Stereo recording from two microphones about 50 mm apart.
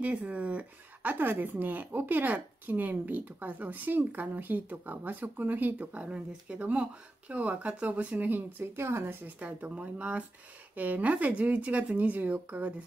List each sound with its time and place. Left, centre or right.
0.0 s speech: right
8.7 s speech: right
9.4 s speech: right